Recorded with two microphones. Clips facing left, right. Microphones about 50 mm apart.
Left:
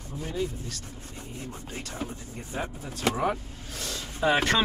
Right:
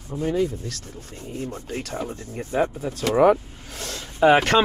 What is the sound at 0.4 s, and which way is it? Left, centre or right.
Speech, right.